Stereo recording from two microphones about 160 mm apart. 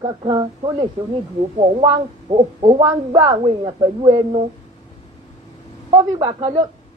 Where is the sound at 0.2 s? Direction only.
30° right (ahead or behind).